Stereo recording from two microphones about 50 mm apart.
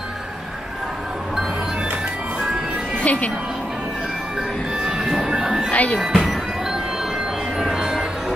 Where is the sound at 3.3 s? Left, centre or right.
Centre.